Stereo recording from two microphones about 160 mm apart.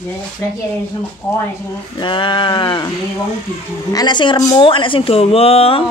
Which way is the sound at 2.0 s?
30° left (ahead or behind).